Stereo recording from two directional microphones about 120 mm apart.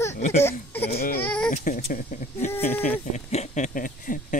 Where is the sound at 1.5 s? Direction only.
90° left.